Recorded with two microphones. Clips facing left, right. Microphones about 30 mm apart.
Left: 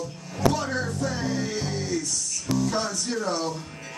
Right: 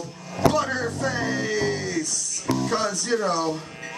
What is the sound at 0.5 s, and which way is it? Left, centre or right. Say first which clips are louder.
Vehicle: right 3 dB; right.